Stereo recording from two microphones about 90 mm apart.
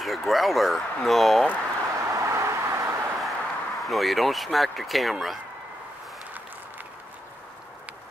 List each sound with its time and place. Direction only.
0.0 s speech: centre (ahead or behind)
2.0 s vehicle: 35° right (ahead or behind)
3.2 s speech: centre (ahead or behind)